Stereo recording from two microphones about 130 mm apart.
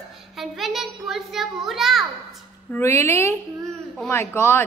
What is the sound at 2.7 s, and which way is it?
A child's voice, 20° left (ahead or behind).